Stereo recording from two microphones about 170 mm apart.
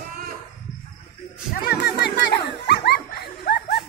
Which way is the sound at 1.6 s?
70° left (ahead or behind).